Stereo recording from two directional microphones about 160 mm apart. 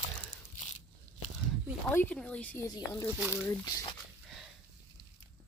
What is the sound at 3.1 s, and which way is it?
Speech, 15° right (ahead or behind).